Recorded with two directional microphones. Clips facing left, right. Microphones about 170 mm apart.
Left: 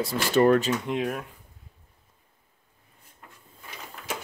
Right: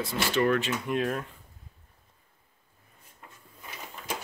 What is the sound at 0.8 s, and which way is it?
Speech, 15° left (ahead or behind).